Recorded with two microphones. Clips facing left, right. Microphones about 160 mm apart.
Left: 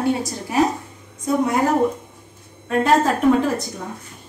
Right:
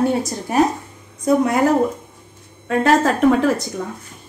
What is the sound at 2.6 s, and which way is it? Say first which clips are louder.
Speech: right 1 dB; 85° right.